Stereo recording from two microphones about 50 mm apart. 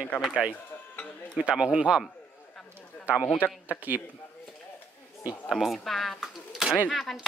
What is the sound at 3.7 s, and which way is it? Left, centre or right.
Speech, right.